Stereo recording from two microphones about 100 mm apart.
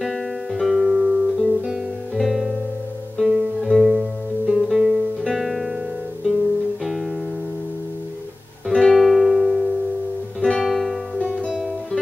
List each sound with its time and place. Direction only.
0.0 s guitar: centre (ahead or behind)
3.2 s music: centre (ahead or behind)
4.5 s guitar: centre (ahead or behind)
6.8 s music: centre (ahead or behind)
8.6 s music: centre (ahead or behind)